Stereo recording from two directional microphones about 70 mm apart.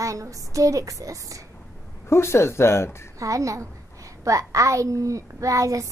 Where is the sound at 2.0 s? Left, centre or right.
Left.